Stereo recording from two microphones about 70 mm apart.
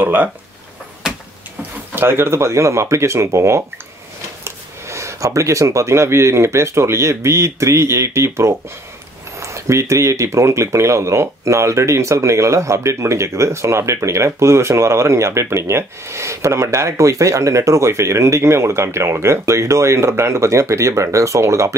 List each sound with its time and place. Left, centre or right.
0.0 s speech: right
1.6 s speech: right